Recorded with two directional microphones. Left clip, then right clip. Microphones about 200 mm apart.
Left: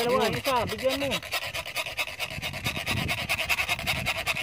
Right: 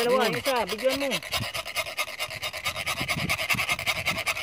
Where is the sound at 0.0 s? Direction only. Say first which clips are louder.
Right 2 dB; 20° right (ahead or behind).